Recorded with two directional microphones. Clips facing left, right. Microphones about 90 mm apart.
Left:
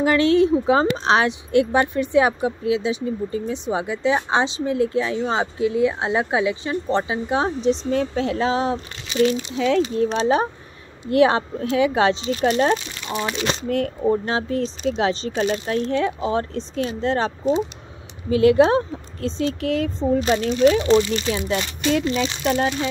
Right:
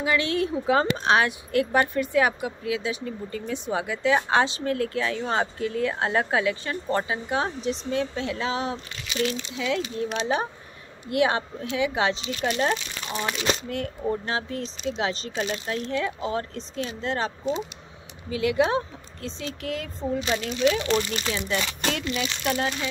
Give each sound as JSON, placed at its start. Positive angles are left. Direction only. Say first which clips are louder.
{"t": 0.2, "sound": "speech", "louder": "left 10 dB", "side_deg": 30}
{"t": 13.7, "sound": "speech", "louder": "left 8 dB", "side_deg": 50}
{"t": 14.0, "sound": "speech", "louder": "left 5 dB", "side_deg": 35}